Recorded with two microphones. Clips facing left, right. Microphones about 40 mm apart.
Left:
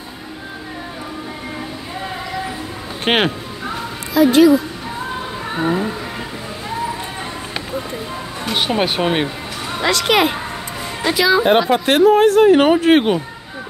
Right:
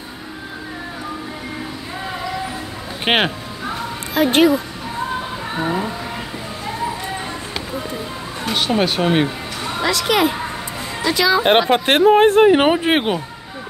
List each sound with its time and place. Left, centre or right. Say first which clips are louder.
3.1 s music: left 1 dB; centre
4.1 s speech: left 3 dB; right
5.5 s speech: left 3 dB; centre
8.5 s speech: even; centre
9.8 s speech: left 2 dB; left
11.1 s speech: left 2 dB; centre
11.7 s speech: even; right
12.4 s speech: left 2 dB; centre